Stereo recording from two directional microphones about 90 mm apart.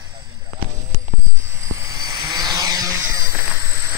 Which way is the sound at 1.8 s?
35° right (ahead or behind).